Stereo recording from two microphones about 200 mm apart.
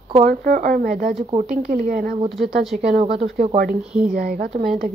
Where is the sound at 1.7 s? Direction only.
45° right (ahead or behind).